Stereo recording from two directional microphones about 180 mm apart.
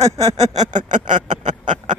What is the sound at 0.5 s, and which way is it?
Speech, 40° right (ahead or behind).